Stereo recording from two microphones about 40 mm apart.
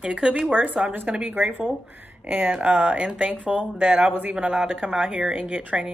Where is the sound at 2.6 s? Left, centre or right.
Right.